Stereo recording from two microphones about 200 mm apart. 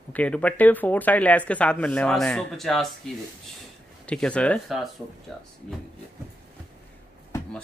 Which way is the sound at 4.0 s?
5° left (ahead or behind).